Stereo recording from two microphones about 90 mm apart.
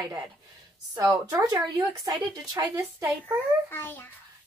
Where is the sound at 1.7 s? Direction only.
45° right (ahead or behind).